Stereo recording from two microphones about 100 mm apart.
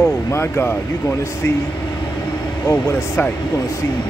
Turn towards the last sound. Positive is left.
turn(degrees=25)  # may be behind; listen again after turning